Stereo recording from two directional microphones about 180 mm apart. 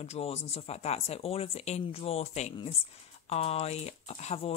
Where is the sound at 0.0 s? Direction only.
35° left (ahead or behind).